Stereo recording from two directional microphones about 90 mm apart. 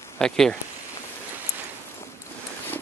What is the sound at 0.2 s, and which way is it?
Speech, 5° left (ahead or behind).